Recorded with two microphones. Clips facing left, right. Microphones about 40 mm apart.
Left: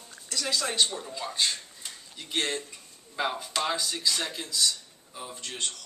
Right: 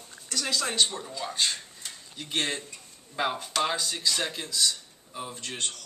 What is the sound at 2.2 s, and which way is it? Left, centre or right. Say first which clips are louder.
Speech: even; centre.